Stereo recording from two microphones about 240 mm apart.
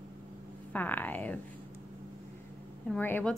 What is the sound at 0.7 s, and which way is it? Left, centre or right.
Speech, centre.